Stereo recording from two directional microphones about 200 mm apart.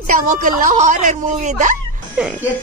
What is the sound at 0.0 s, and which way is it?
Speech, 40° right (ahead or behind).